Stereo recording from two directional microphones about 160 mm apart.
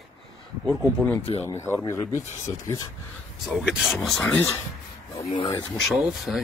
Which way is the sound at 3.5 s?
5° right (ahead or behind).